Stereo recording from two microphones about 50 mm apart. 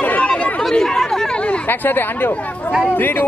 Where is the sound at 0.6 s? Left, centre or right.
Centre.